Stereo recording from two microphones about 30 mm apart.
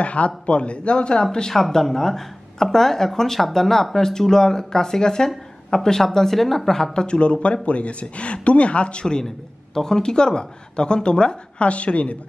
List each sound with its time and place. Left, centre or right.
0.0 s speech: left
1.2 s a woman's voice: left
6.9 s speech: left
9.8 s speech: centre; by 12.2 s left